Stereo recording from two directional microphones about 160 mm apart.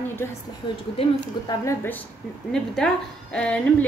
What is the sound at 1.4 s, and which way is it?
Speech, 30° left (ahead or behind).